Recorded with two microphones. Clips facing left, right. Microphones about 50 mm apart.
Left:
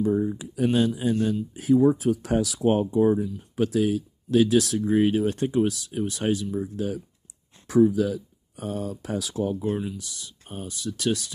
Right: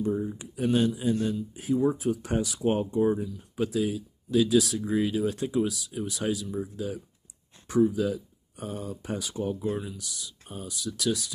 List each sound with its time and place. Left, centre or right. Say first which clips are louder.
0.6 s speech: left 2 dB; left
3.1 s speech: left 4 dB; left
3.5 s speech: left 5 dB; left
7.6 s speech: left 4 dB; left
9.9 s speech: left 2 dB; left